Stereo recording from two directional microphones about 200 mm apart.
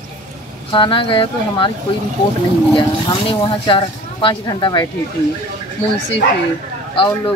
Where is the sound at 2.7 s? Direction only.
20° left (ahead or behind).